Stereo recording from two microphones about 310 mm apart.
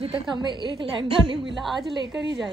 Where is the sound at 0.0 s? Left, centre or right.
Centre.